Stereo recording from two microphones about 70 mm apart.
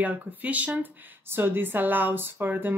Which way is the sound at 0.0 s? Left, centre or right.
Right.